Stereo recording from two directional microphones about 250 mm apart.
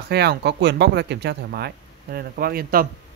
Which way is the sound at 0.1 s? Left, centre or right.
Right.